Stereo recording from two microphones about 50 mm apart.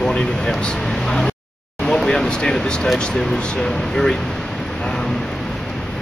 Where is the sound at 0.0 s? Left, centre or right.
Centre.